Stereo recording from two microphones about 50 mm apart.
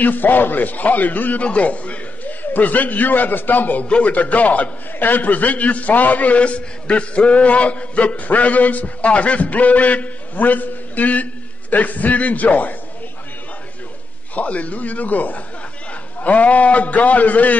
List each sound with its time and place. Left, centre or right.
0.0 s a man's voice: left
3.8 s a man's voice: left
14.3 s a man's voice: left